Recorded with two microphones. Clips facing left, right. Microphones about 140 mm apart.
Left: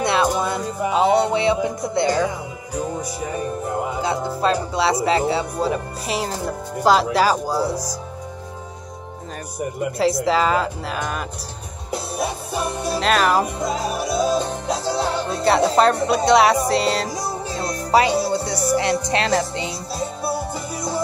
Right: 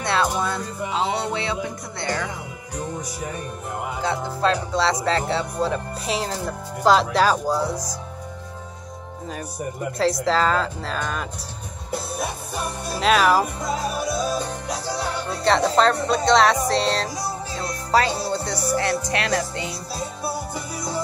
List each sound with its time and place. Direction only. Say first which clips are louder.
0.0 s music: left 3 dB; 15° left (ahead or behind)
4.0 s speech: right 1 dB; 10° left (ahead or behind)
10.2 s speech: left 2 dB; 10° left (ahead or behind)
13.0 s speech: right 1 dB; 5° right (ahead or behind)
14.3 s music: left 5 dB; 25° left (ahead or behind)
15.4 s speech: left 2 dB; 10° left (ahead or behind)
17.9 s music: left 4 dB; 15° left (ahead or behind)